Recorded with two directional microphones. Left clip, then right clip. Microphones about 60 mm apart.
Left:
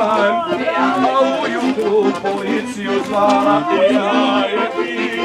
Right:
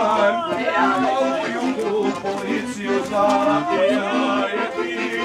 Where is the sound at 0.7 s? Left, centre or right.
Right.